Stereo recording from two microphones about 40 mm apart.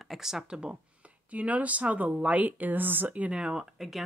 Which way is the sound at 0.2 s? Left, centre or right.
Centre.